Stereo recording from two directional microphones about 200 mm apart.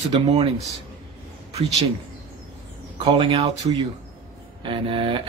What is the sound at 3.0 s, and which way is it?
A man's voice, 25° right (ahead or behind).